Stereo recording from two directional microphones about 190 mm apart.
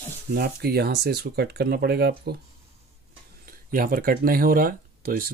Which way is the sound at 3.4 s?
50° right (ahead or behind).